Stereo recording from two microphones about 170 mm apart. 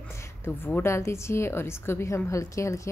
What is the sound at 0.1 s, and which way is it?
A woman's voice, 10° left (ahead or behind).